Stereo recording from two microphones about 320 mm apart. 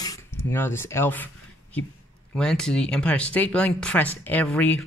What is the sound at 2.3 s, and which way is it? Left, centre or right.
Speech, centre.